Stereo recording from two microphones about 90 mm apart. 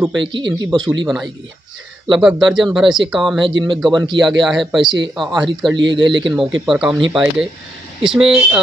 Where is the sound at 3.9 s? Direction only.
55° right (ahead or behind).